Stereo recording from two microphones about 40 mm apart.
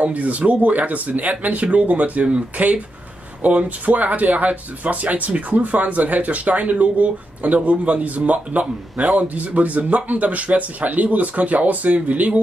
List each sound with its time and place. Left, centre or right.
0.0 s speech: right